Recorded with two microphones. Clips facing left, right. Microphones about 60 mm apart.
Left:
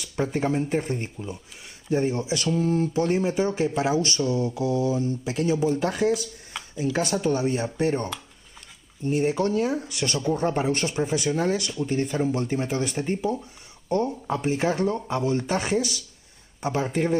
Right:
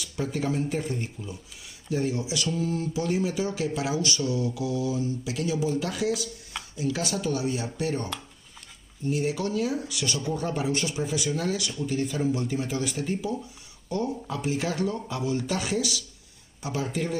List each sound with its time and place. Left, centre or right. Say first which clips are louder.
0.0 s speech: left 4 dB; left